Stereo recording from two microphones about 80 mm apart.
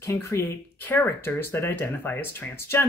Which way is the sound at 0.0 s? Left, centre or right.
Left.